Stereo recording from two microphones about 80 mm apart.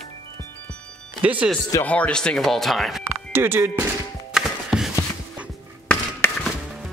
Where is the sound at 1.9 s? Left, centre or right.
Centre.